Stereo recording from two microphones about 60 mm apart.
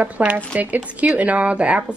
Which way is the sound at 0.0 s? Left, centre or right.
Centre.